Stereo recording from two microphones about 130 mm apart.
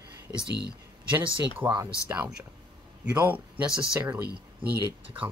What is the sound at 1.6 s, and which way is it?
Speech, 10° right (ahead or behind).